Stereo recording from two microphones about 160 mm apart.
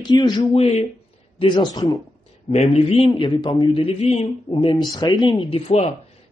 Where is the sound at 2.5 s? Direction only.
40° left (ahead or behind).